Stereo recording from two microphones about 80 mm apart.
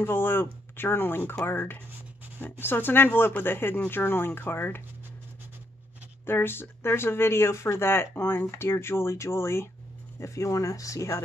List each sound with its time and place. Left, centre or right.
0.0 s speech: left
6.2 s speech: left